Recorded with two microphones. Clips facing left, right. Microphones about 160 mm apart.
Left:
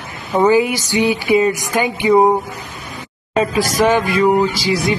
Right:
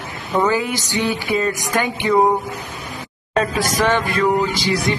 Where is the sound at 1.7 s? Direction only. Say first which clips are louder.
Left 3 dB; 5° left (ahead or behind).